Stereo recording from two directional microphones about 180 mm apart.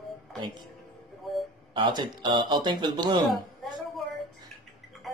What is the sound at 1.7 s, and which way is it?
A man's voice, 25° right (ahead or behind).